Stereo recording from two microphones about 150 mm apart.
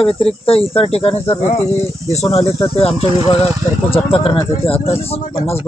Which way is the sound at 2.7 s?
40° left (ahead or behind).